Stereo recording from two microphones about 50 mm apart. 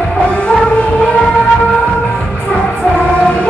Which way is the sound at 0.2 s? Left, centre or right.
Left.